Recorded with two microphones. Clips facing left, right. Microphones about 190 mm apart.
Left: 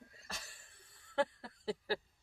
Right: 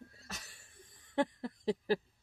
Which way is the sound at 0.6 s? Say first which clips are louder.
Right 5 dB; 15° right (ahead or behind).